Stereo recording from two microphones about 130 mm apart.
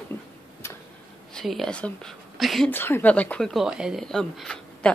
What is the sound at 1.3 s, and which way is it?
Speech, 5° left (ahead or behind).